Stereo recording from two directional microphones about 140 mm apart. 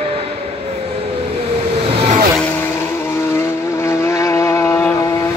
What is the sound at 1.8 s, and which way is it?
Vehicle, 55° right (ahead or behind).